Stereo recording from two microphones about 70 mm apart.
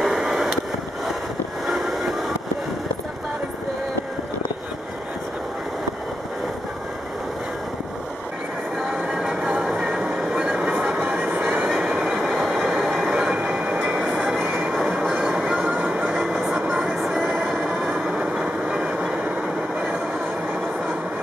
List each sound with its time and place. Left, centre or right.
0.0 s skateboard: centre
8.7 s train: centre
14.4 s music: right
14.7 s train: centre
15.1 s music: centre
18.1 s vehicle: centre